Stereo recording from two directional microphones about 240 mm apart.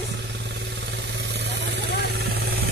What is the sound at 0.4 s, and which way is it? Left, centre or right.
Vehicle, right.